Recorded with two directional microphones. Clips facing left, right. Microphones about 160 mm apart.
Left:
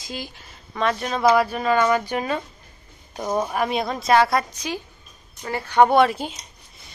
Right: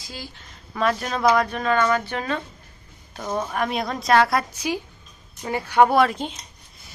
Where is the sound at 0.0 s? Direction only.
20° left (ahead or behind).